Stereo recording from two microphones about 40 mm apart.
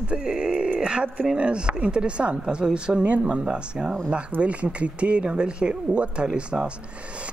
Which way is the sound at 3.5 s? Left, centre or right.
Right.